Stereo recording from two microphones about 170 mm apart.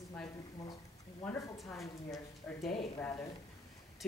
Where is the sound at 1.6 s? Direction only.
Centre (ahead or behind).